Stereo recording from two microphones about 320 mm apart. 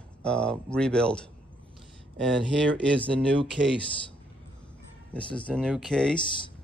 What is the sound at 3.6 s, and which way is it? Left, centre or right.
Speech, right.